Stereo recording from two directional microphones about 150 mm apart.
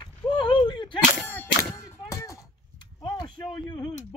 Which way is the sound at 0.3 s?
35° left (ahead or behind).